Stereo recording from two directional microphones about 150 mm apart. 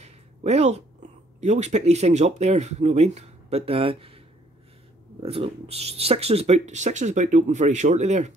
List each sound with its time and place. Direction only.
0.0 s a sound: 45° right (ahead or behind)
1.4 s speech: 50° right (ahead or behind)
5.2 s speech: 40° right (ahead or behind)